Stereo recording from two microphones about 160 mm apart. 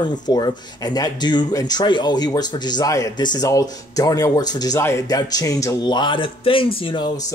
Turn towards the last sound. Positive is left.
turn(degrees=30)  # may be behind; listen again after turning